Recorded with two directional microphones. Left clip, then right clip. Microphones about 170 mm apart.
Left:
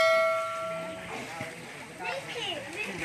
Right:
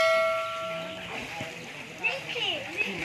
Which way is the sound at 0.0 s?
Centre (ahead or behind).